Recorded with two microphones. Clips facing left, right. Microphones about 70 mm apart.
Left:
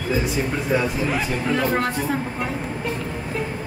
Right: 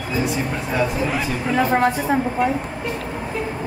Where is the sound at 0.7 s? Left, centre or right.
Centre.